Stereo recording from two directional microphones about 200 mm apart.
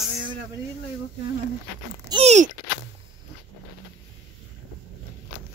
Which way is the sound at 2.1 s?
30° right (ahead or behind).